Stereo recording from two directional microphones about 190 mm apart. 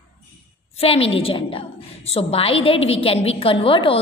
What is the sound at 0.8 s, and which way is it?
A woman's voice, 30° left (ahead or behind).